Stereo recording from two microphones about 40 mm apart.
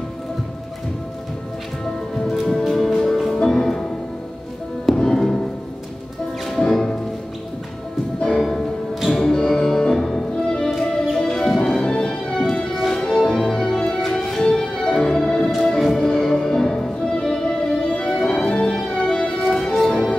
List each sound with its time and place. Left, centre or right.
2.4 s music: centre
4.9 s music: centre
6.6 s music: centre
8.4 s music: centre
10.6 s music: centre
11.1 s music: centre
11.9 s music: left
12.7 s music: centre
15.0 s organ: centre
15.6 s music: centre
17.5 s music: left
18.5 s music: left
18.8 s music: centre